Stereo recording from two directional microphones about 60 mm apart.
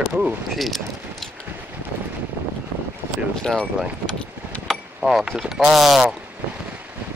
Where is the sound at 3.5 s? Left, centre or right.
Centre.